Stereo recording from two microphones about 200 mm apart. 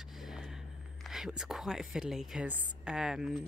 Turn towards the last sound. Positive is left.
turn(degrees=0)  # may be behind; listen again after turning